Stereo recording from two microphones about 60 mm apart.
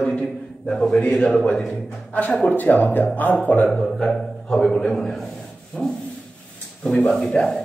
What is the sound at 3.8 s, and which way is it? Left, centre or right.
A man's voice, centre.